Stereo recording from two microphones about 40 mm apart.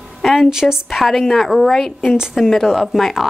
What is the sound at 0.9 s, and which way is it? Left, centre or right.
Speech, centre.